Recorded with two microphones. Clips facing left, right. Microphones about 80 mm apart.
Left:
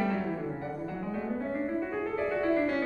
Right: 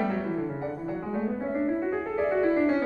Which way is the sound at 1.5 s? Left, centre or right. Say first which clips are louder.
Right 6 dB; right.